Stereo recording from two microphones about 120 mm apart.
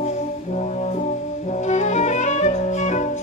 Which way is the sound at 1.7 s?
80° left.